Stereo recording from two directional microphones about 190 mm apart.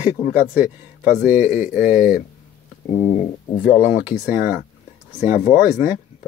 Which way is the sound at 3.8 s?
10° right (ahead or behind).